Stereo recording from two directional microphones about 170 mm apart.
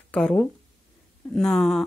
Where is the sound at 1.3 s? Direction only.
5° left (ahead or behind).